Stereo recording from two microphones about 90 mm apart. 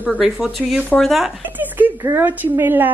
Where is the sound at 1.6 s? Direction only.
20° right (ahead or behind).